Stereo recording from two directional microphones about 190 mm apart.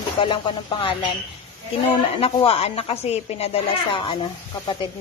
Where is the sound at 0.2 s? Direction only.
25° left (ahead or behind).